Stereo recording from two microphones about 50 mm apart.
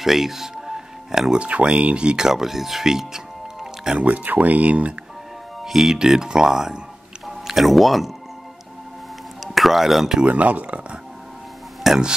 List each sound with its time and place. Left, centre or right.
0.0 s music: centre
1.4 s speech: right
4.0 s speech: right
5.6 s speech: centre
7.2 s music: centre
9.4 s speech: centre
10.2 s speech: right
11.8 s speech: centre